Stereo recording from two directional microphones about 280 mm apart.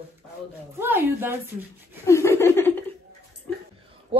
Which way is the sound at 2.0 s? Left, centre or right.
Centre.